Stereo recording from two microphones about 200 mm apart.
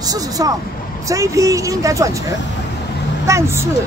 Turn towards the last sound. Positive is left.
turn(degrees=-15)  # may be behind; listen again after turning